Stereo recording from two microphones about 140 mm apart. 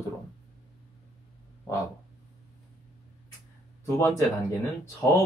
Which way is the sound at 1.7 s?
25° left (ahead or behind).